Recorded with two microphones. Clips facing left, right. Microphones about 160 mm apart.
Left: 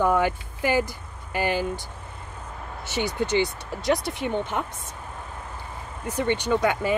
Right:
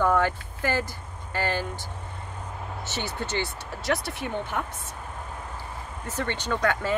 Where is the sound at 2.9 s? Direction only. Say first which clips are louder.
Left 8 dB; 15° left (ahead or behind).